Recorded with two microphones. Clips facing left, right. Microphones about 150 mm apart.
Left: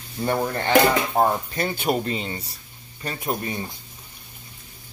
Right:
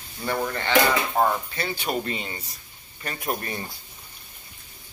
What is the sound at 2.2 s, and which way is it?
Speech, 30° left (ahead or behind).